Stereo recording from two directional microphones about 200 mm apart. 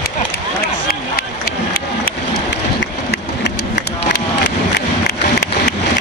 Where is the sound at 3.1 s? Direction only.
55° left (ahead or behind).